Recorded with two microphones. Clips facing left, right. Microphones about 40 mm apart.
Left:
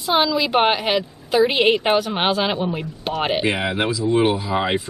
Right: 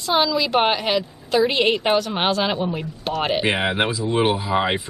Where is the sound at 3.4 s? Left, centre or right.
Right.